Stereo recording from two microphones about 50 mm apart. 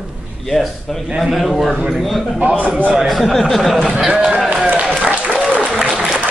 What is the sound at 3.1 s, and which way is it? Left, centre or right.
Speech, centre.